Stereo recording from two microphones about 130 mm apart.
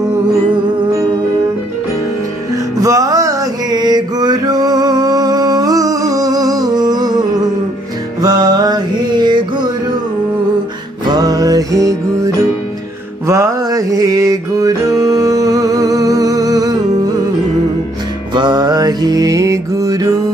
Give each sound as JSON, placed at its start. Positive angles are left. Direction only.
{"t": 2.8, "sound": "music", "side_deg": -25}
{"t": 11.1, "sound": "music", "side_deg": -30}
{"t": 13.3, "sound": "music", "side_deg": -25}
{"t": 18.3, "sound": "music", "side_deg": -35}